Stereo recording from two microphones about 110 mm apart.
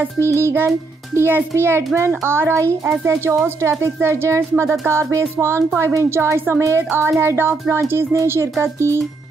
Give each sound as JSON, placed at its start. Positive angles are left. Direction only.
{"t": 0.3, "sound": "a woman's voice", "side_deg": -25}